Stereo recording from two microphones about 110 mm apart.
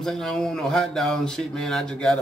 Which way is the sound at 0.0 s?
5° left (ahead or behind).